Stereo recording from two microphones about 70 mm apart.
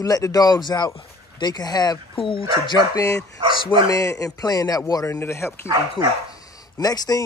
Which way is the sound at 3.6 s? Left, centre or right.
Left.